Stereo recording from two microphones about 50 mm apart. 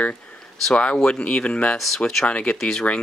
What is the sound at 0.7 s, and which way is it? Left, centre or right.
Speech, left.